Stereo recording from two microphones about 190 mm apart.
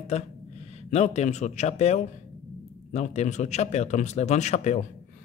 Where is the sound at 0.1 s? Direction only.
35° left (ahead or behind).